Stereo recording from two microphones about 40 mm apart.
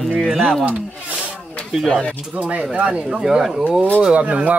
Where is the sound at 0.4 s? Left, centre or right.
Centre.